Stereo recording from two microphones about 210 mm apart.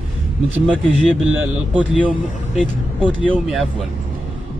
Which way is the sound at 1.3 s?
5° right (ahead or behind).